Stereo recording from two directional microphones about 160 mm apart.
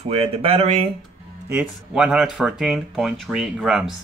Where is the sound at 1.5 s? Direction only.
5° right (ahead or behind).